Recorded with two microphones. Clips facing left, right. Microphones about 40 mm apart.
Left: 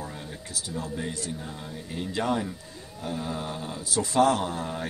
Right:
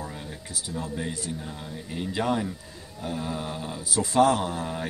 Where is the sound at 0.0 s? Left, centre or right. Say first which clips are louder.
Right 1 dB; centre.